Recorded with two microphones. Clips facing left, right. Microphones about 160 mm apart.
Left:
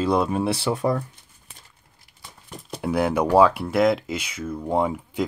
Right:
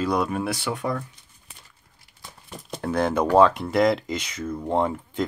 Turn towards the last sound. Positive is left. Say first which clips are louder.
# left 1 dB
turn(degrees=10)  # may be behind; listen again after turning